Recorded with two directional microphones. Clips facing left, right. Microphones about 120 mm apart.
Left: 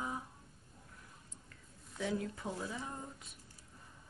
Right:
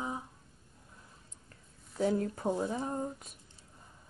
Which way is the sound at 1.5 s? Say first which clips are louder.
Even; 35° right (ahead or behind).